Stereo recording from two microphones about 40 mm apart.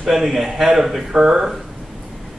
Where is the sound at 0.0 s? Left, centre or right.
Centre.